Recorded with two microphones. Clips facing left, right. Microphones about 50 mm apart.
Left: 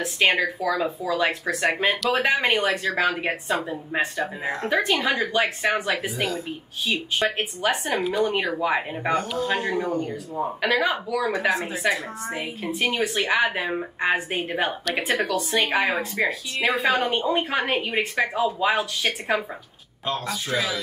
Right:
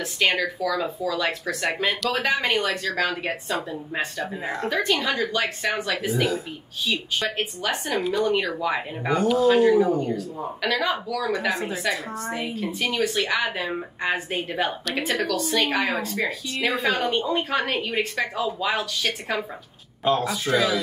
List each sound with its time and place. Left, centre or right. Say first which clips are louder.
0.0 s a woman's voice: left 2 dB; left
8.0 s speech: even; centre
9.1 s speech: right 6 dB; centre
10.1 s a woman's voice: left 2 dB; centre
11.3 s speech: left 2 dB; centre
12.3 s a woman's voice: right 1 dB; centre
20.1 s speech: right 5 dB; centre